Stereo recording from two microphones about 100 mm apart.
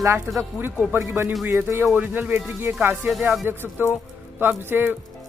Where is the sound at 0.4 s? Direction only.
25° right (ahead or behind).